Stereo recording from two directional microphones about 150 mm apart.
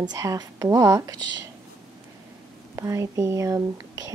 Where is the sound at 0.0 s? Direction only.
25° right (ahead or behind).